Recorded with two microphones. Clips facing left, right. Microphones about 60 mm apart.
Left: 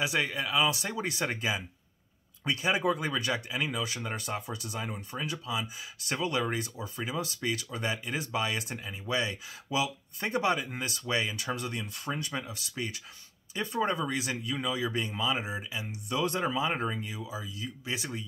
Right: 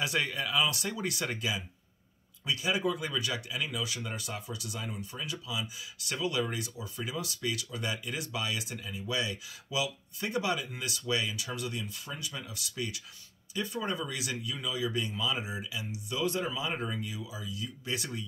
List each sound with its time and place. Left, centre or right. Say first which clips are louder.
0.0 s speech: left 2 dB; centre; by 12.4 s left
12.4 s speech: left 1 dB; left